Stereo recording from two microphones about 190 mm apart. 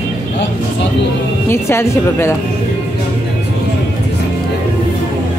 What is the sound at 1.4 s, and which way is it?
Speech, 15° left (ahead or behind).